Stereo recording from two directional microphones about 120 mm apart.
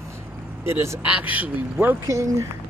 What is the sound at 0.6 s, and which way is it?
Speech, 20° right (ahead or behind).